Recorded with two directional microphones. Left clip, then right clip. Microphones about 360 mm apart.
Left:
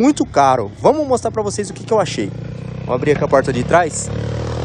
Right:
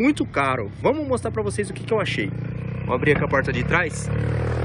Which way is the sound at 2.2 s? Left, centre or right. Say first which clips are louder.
Left 4 dB; left.